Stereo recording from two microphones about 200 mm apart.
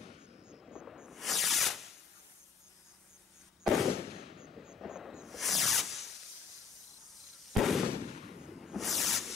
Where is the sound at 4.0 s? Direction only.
30° left (ahead or behind).